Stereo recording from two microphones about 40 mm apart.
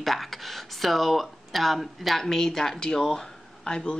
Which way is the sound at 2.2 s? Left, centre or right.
Centre.